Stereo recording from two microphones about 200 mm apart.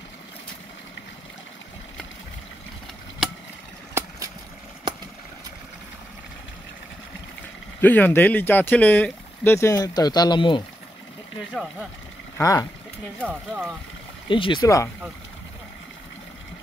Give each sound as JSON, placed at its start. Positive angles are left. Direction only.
{"t": 7.8, "sound": "speech", "side_deg": 10}
{"t": 12.4, "sound": "speech", "side_deg": 15}
{"t": 13.2, "sound": "speech", "side_deg": -5}
{"t": 14.2, "sound": "speech", "side_deg": 25}